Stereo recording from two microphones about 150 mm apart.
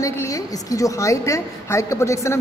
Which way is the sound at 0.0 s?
20° left (ahead or behind).